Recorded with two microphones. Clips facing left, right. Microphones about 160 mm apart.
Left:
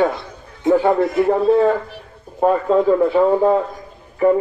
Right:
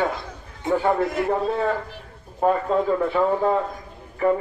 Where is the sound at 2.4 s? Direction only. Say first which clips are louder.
Left 5 dB; 30° left (ahead or behind).